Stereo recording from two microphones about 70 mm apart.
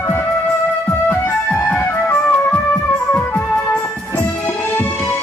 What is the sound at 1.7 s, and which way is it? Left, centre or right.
Music, left.